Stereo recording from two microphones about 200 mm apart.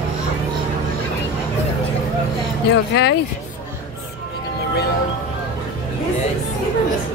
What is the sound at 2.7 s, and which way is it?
Speech, 60° left (ahead or behind).